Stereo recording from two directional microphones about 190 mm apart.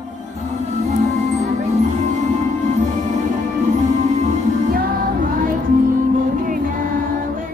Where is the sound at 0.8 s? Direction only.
35° right (ahead or behind).